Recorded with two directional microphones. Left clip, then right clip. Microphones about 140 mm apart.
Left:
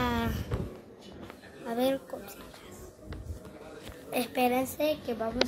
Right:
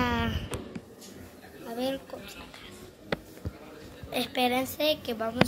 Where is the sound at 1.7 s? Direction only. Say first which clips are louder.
Left 3 dB; 25° left (ahead or behind).